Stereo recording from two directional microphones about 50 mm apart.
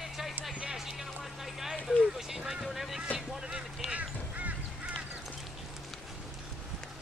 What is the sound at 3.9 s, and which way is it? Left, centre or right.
Quack, right.